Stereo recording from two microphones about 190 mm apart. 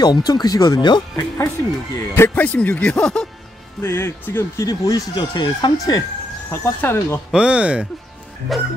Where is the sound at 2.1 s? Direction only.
10° left (ahead or behind).